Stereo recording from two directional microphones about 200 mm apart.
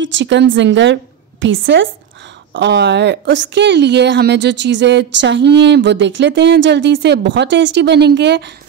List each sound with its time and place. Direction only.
0.0 s a woman's voice: 70° right (ahead or behind)